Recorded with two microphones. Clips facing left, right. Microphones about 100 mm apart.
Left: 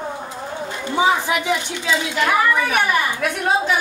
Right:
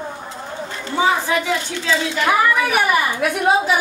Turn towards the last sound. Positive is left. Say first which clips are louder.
# right 3 dB
turn(degrees=-5)  # may be behind; listen again after turning